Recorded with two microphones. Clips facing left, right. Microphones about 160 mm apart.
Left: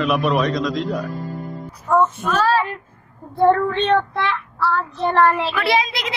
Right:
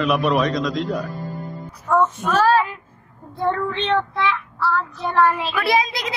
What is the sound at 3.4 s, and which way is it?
Child singing, 55° left (ahead or behind).